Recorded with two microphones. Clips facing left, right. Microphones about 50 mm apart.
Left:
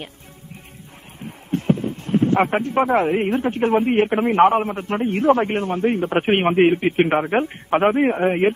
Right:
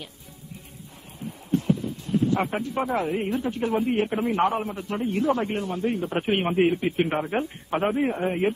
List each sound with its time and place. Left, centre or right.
1.2 s speech: left